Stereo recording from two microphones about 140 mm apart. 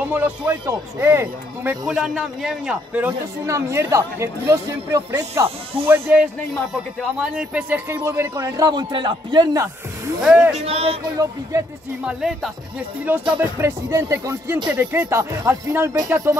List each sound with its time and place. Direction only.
0.0 s speech: 10° right (ahead or behind)
1.9 s a man's voice: 5° right (ahead or behind)
7.0 s speech: 5° right (ahead or behind)
8.6 s a man's voice: 35° right (ahead or behind)
10.2 s speech: 10° right (ahead or behind)
10.6 s speech: 45° right (ahead or behind)
11.5 s speech: 20° right (ahead or behind)
12.0 s a man's voice: 5° right (ahead or behind)
13.3 s speech: 15° right (ahead or behind)